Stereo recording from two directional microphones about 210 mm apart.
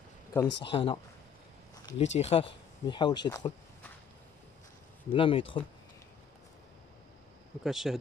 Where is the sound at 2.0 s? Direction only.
30° left (ahead or behind).